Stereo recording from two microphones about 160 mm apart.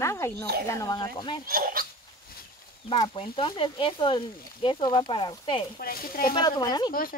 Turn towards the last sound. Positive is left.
turn(degrees=25)  # may be behind; listen again after turning